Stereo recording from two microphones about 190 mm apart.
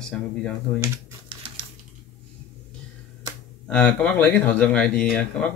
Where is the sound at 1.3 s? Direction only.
30° right (ahead or behind).